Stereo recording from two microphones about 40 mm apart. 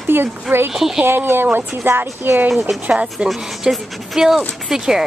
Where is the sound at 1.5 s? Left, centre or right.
Right.